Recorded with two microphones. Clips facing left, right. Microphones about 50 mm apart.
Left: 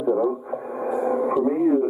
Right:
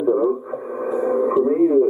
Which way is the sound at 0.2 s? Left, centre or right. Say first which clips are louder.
Right 3 dB; centre.